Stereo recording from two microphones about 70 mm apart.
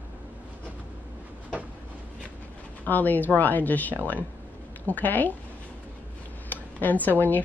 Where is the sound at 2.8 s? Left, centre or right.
Left.